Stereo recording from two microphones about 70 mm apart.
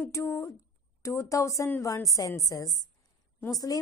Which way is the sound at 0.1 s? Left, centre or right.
Left.